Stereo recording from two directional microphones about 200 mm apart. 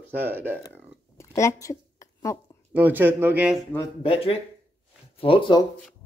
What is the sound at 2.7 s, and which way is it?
Speech, 10° right (ahead or behind).